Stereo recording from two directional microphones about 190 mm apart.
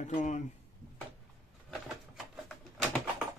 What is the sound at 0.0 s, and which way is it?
Speech, 40° left (ahead or behind).